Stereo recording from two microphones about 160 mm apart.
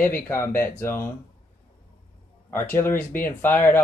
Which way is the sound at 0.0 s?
15° left (ahead or behind).